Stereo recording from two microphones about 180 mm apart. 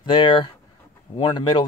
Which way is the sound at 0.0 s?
25° left (ahead or behind).